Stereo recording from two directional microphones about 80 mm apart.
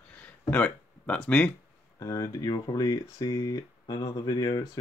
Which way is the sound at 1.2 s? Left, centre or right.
Centre.